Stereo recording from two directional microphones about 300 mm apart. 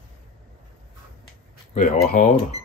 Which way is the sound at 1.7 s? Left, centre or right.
Left.